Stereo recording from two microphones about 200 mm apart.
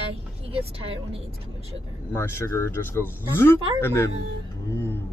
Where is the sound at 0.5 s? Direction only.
30° right (ahead or behind).